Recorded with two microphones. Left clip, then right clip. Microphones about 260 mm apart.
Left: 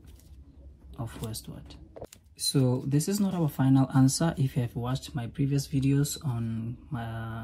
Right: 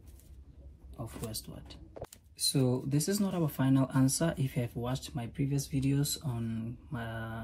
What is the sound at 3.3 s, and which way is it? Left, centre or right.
Speech, centre.